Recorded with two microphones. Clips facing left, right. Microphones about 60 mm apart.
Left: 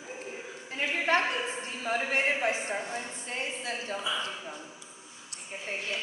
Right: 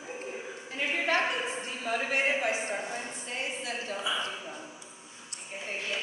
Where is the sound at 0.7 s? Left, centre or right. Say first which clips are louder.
Left 1 dB; left.